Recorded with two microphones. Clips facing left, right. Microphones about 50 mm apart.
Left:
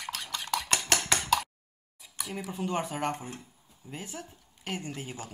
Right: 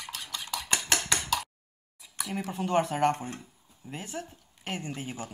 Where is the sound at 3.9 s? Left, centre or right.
Right.